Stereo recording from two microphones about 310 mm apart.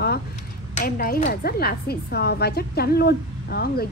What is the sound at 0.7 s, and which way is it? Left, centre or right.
Speech, left.